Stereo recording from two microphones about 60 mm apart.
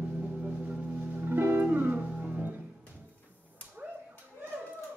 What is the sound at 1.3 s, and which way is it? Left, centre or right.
Music, right.